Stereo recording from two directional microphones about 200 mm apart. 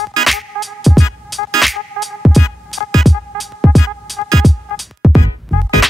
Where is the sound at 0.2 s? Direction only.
Centre (ahead or behind).